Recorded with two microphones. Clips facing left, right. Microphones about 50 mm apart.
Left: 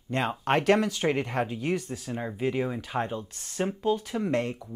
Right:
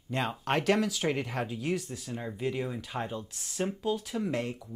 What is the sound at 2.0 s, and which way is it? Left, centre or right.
Speech, left.